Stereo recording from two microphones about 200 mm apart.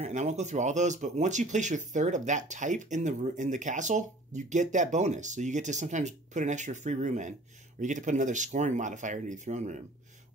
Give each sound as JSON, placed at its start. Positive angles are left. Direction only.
{"t": 0.0, "sound": "speech", "side_deg": -35}